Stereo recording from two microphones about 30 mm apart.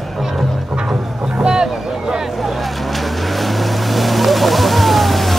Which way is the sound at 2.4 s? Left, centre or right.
Centre.